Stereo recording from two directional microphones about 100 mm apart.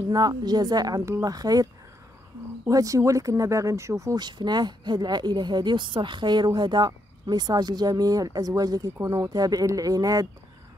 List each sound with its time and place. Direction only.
0.1 s a woman's voice: 45° right (ahead or behind)
2.7 s a woman's voice: 35° right (ahead or behind)
4.2 s a woman's voice: 45° right (ahead or behind)